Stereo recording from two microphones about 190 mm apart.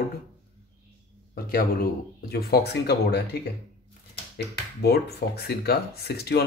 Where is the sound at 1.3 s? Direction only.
50° left (ahead or behind).